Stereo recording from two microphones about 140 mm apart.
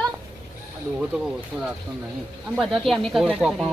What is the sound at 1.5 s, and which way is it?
Speech, 10° right (ahead or behind).